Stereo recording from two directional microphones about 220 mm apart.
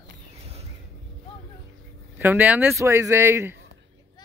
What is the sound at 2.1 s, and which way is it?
Speech, 10° right (ahead or behind).